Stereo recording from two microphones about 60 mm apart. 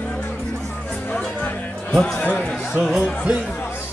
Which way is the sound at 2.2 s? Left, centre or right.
Left.